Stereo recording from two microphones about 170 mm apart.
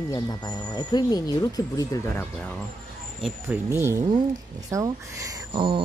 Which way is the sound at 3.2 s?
10° right (ahead or behind).